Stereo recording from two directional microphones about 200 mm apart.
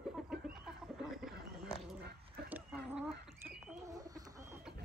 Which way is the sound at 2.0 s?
50° right (ahead or behind).